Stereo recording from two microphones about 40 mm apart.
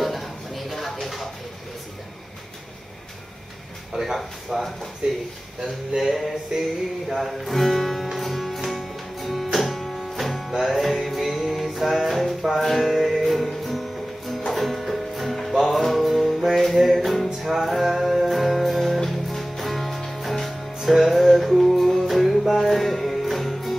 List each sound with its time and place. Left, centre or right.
0.0 s a sound: centre
3.9 s speech: centre
5.0 s speech: right
5.6 s speech: centre
7.2 s speech: centre
8.2 s music: centre